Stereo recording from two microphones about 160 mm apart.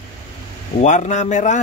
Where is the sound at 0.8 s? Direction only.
50° left (ahead or behind).